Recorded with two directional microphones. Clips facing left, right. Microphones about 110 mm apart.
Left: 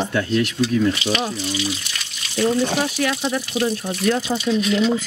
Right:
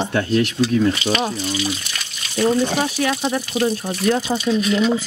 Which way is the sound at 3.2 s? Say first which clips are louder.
Right 2 dB; 40° right (ahead or behind).